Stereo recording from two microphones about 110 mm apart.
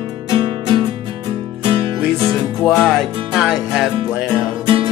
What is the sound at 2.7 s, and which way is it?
Music, 5° left (ahead or behind).